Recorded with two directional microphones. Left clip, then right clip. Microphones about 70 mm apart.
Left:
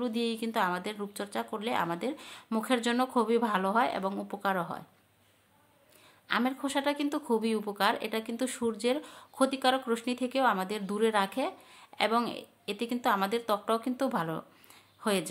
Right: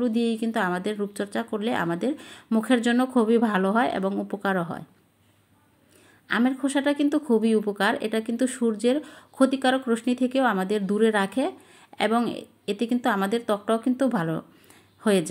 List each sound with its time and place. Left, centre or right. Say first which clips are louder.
0.0 s a woman's voice: right 7 dB; centre
6.4 s a woman's voice: right 9 dB; right
15.0 s speech: right 7 dB; right